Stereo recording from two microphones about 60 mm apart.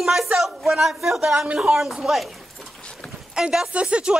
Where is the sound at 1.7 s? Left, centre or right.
Centre.